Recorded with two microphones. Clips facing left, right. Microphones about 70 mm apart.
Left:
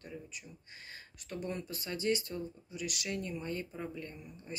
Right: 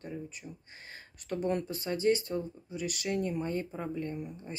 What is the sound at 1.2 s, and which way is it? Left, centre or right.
Speech, right.